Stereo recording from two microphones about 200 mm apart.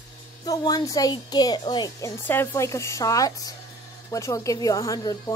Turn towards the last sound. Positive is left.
turn(degrees=20)  # may be behind; listen again after turning